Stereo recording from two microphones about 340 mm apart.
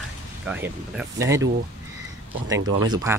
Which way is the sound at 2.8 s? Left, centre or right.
Centre.